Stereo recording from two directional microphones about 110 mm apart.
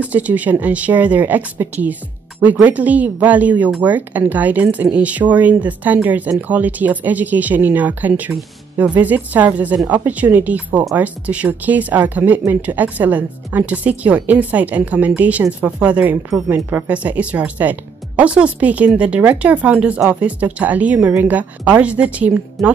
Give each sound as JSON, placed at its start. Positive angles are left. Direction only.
{"t": 0.0, "sound": "speech", "side_deg": -15}